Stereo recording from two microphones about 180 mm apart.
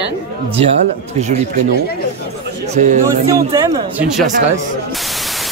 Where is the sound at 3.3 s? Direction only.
20° right (ahead or behind).